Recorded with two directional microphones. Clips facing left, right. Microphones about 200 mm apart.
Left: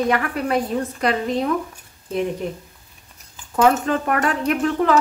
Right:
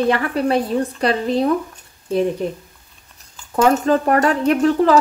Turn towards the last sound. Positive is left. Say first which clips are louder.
# right 4 dB
turn(degrees=-35)  # may be behind; listen again after turning